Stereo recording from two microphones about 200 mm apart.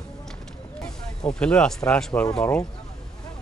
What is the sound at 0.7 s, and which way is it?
Speech, 5° left (ahead or behind).